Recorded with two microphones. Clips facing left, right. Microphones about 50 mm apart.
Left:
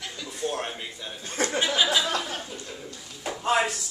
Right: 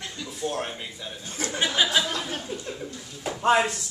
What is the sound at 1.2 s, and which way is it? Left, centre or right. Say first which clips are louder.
Speech: left 5 dB; left.